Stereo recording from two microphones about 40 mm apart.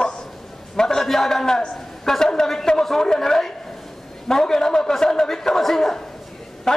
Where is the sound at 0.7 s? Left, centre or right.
Centre.